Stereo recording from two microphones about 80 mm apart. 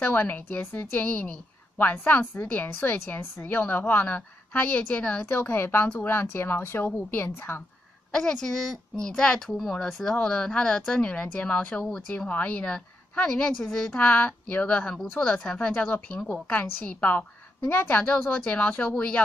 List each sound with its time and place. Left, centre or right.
0.0 s a woman's voice: left
5.2 s a woman's voice: left
8.1 s a woman's voice: centre